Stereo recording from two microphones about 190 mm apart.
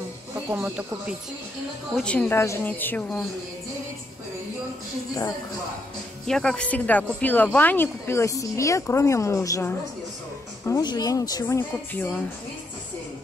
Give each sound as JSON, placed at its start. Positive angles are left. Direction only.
{"t": 0.5, "sound": "speech", "side_deg": -10}
{"t": 2.0, "sound": "speech", "side_deg": 5}
{"t": 6.2, "sound": "speech", "side_deg": 5}